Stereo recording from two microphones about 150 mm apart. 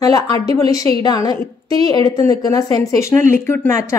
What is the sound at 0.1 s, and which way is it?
A woman's voice, 25° left (ahead or behind).